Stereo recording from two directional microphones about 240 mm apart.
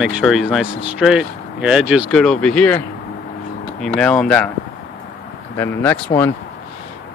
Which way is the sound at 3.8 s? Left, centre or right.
Centre.